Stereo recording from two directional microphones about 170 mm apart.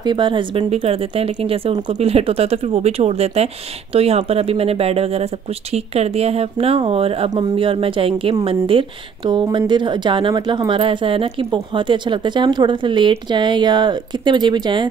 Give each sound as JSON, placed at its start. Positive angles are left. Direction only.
{"t": 0.0, "sound": "speech", "side_deg": -25}